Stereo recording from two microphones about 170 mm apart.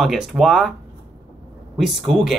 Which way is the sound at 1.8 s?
Centre (ahead or behind).